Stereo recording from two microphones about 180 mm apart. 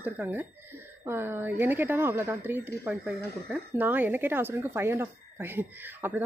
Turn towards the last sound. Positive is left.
turn(degrees=-10)  # may be behind; listen again after turning